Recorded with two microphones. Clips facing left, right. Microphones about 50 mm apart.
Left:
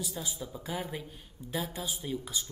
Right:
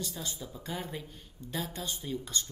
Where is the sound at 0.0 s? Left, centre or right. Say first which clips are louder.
Left 1 dB; centre.